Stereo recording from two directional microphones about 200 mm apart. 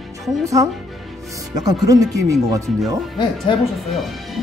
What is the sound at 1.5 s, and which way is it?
Speech, 20° right (ahead or behind).